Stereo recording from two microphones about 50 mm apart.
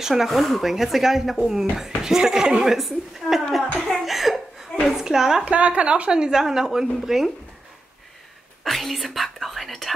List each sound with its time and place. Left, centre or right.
0.0 s a woman's voice: centre
5.4 s a woman's voice: right; by 7.2 s centre
8.6 s speech: centre